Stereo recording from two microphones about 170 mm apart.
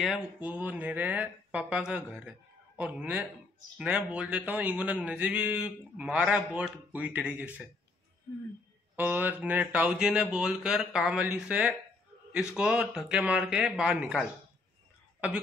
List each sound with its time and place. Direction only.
0.0 s a man's voice: 5° right (ahead or behind)
8.9 s a man's voice: 10° right (ahead or behind)